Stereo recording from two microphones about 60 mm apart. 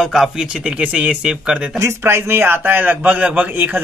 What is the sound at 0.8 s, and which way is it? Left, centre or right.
Speech, right.